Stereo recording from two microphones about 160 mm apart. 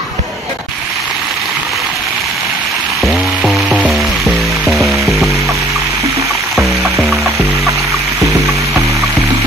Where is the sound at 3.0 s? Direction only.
Centre (ahead or behind).